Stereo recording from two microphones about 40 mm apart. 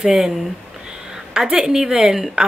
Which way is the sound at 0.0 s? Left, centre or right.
Centre.